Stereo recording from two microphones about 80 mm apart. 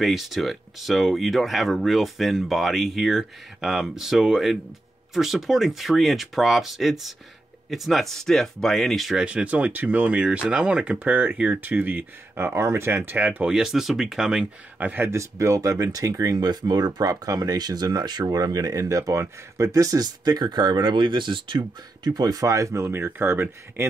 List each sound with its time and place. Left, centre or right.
0.0 s speech: centre
9.2 s speech: centre
13.5 s speech: centre
15.0 s speech: right